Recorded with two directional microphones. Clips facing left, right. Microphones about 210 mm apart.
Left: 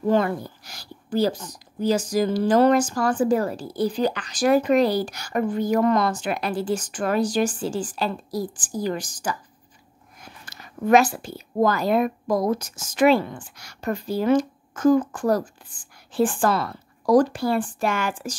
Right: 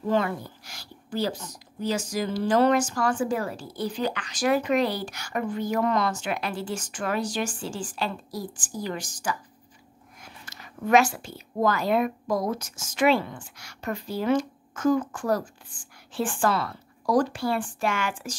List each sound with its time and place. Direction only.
0.1 s a woman's voice: 40° left (ahead or behind)
10.6 s a woman's voice: 35° left (ahead or behind)